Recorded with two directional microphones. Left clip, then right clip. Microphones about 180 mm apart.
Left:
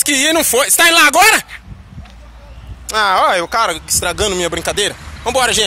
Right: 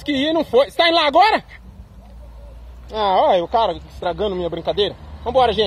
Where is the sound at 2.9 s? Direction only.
10° right (ahead or behind).